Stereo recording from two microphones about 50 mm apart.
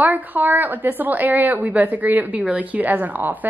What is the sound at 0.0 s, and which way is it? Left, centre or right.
A woman's voice, right.